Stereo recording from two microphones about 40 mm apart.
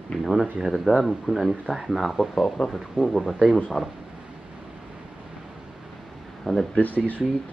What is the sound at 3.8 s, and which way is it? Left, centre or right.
Speech, centre.